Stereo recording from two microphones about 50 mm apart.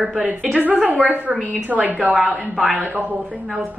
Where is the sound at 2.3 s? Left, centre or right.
Centre.